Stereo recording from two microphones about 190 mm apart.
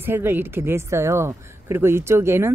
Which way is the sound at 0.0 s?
10° right (ahead or behind).